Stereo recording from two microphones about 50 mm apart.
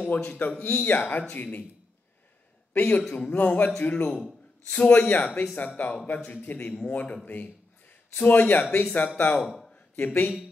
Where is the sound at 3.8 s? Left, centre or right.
Left.